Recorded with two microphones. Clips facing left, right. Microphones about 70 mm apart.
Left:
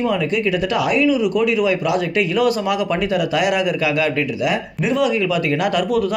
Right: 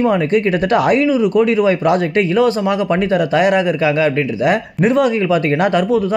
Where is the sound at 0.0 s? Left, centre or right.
Right.